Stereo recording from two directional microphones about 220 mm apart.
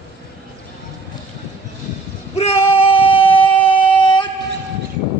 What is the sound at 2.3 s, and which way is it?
Female singing, 25° left (ahead or behind).